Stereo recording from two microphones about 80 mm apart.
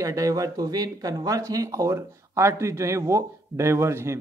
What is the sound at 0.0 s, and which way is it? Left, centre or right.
Speech, right.